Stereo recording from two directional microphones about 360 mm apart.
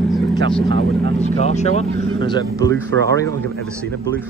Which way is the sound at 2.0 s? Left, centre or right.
Centre.